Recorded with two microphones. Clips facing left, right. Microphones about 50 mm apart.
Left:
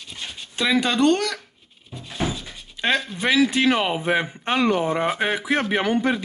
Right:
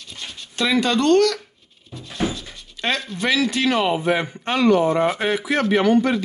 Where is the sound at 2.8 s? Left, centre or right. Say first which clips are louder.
Left 1 dB; centre.